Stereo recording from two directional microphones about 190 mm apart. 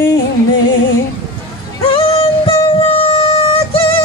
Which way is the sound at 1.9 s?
30° left (ahead or behind).